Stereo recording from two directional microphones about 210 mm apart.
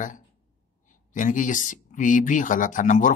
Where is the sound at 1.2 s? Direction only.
40° left (ahead or behind).